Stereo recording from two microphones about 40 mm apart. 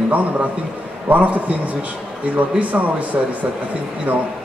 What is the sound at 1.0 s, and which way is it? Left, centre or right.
Speech, right.